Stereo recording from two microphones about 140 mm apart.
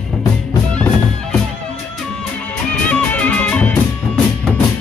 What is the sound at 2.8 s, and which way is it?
Music, 10° left (ahead or behind).